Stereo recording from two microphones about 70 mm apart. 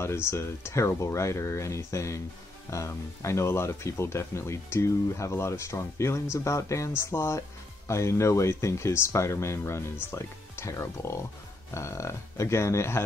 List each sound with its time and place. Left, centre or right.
0.0 s speech: left